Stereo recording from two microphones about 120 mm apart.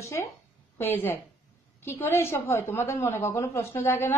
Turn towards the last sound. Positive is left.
turn(degrees=20)  # may be behind; listen again after turning